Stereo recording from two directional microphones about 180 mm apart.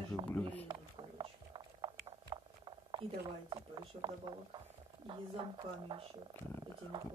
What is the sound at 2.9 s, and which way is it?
Speech, 25° right (ahead or behind).